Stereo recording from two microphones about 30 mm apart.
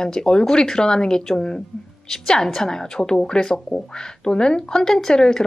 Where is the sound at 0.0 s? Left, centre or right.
Left.